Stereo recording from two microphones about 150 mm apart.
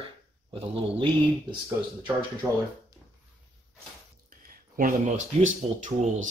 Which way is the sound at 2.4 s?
20° right (ahead or behind).